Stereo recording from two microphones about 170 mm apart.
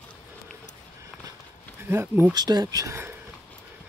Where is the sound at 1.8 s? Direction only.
15° right (ahead or behind).